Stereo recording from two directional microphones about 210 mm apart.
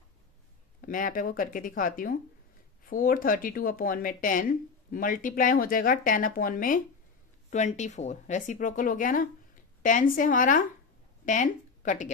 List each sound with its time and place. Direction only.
0.7 s speech: 40° left (ahead or behind)